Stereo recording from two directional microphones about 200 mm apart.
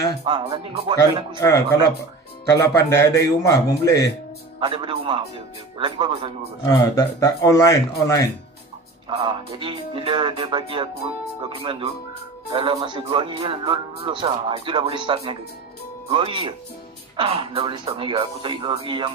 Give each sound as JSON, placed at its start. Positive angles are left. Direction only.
{"t": 0.2, "sound": "speech", "side_deg": -25}
{"t": 1.4, "sound": "a man's voice", "side_deg": 15}
{"t": 4.6, "sound": "speech", "side_deg": -25}
{"t": 6.6, "sound": "a man's voice", "side_deg": 15}
{"t": 9.1, "sound": "speech", "side_deg": -25}